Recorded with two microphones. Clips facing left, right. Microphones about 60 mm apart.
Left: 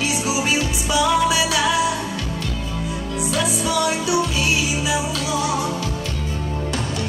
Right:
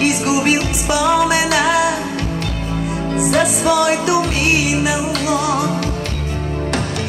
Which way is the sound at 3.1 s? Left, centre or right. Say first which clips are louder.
Right 7 dB; right.